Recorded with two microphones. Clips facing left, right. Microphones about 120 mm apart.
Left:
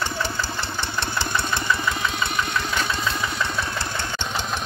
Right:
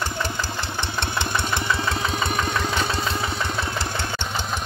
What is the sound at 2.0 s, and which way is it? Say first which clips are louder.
Engine: right 1 dB; 40° right (ahead or behind).